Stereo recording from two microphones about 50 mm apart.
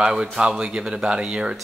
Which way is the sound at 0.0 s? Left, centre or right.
Centre.